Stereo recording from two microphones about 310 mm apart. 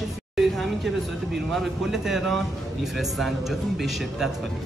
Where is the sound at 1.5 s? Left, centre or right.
Centre.